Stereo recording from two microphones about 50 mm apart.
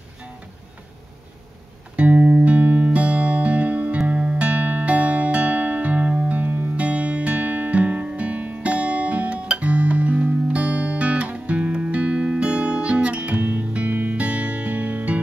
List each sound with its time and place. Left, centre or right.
2.0 s music: right